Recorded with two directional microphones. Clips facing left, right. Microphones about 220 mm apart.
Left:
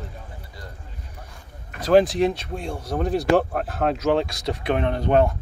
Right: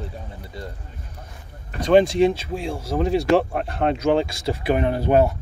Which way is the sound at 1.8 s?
Centre (ahead or behind).